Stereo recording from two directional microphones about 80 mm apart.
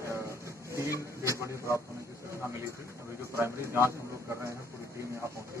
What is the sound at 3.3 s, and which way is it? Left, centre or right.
Speech, right.